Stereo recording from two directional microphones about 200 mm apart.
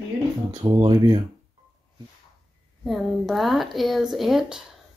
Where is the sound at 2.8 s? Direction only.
Centre (ahead or behind).